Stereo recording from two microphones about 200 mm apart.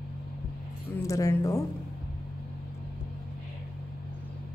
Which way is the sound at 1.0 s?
15° left (ahead or behind).